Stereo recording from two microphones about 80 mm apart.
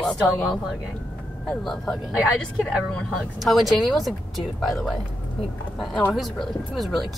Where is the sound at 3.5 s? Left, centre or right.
Centre.